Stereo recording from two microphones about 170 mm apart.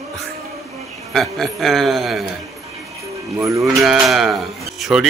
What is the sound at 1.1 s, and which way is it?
Speech, centre (ahead or behind).